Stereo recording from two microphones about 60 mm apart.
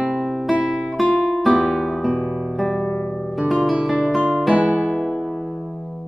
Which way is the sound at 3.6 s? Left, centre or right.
Centre.